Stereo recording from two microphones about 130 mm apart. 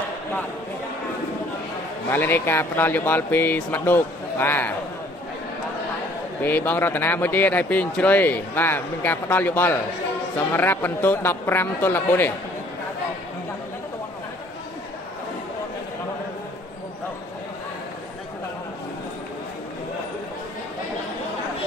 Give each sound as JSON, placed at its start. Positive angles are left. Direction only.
{"t": 2.0, "sound": "speech", "side_deg": 15}
{"t": 6.4, "sound": "speech", "side_deg": 15}